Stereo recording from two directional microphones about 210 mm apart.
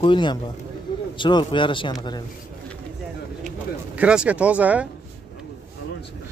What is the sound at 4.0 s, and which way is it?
Speech, 5° right (ahead or behind).